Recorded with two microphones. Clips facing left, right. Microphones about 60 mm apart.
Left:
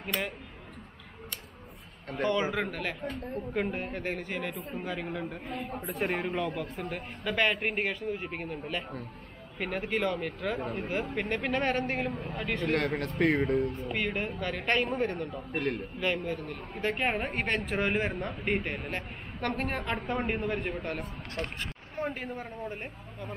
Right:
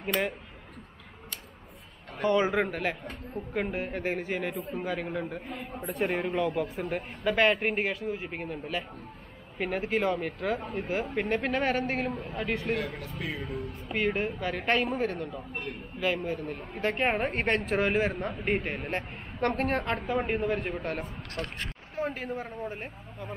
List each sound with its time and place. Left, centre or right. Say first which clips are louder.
0.0 s speech: right 4 dB; centre
2.2 s a man's voice: right 4 dB; right; by 6.6 s centre
6.6 s a man's voice: right 4 dB; centre
12.7 s speech: left 5 dB; left
13.8 s a man's voice: right 3 dB; centre
15.5 s speech: left 6 dB; left
16.0 s a man's voice: right 4 dB; centre